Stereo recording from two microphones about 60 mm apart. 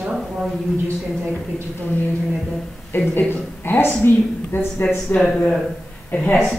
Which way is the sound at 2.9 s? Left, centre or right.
Left.